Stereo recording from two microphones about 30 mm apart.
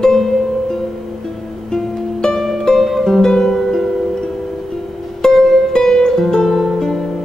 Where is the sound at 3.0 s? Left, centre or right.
Centre.